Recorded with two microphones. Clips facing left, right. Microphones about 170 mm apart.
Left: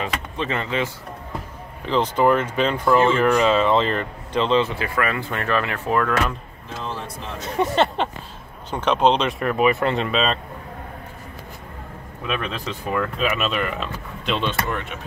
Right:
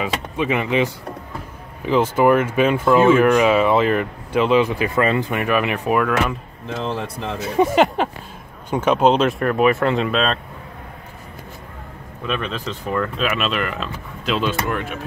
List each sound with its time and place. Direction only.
0.0 s speech: 10° right (ahead or behind)
6.7 s speech: 70° right (ahead or behind)
7.3 s speech: 10° right (ahead or behind)
12.3 s speech: 5° left (ahead or behind)